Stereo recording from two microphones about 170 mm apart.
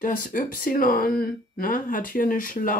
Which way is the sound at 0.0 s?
50° left (ahead or behind).